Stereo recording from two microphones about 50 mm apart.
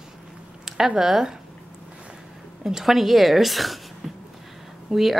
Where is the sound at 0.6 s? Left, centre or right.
Centre.